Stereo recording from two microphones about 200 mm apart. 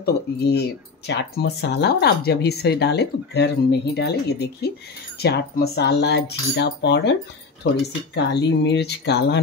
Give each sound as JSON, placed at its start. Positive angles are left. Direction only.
{"t": 0.0, "sound": "speech", "side_deg": 55}